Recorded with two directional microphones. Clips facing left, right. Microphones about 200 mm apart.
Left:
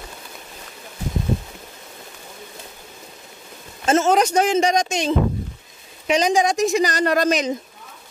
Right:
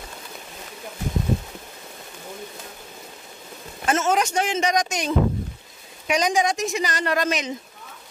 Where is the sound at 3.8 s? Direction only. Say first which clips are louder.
Left 5 dB; 35° left (ahead or behind).